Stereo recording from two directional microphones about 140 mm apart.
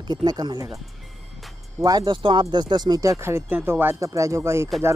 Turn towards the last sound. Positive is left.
turn(degrees=-20)  # may be behind; listen again after turning